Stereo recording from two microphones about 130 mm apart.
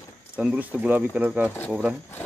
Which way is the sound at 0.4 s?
10° right (ahead or behind).